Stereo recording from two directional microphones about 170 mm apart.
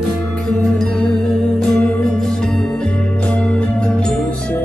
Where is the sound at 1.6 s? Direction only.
5° left (ahead or behind).